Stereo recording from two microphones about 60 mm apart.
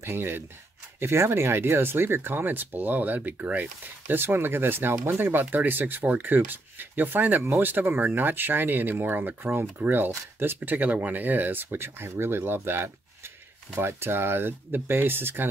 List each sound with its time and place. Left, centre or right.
0.0 s speech: right